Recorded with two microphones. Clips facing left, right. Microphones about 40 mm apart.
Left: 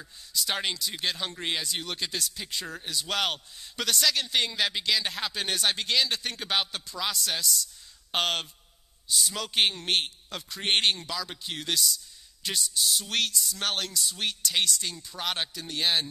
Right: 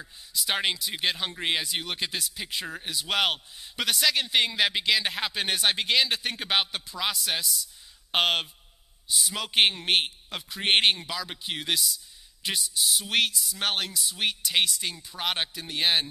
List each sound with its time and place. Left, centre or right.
0.0 s a man's voice: centre